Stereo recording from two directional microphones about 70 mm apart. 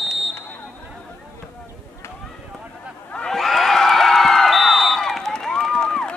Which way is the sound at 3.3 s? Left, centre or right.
Centre.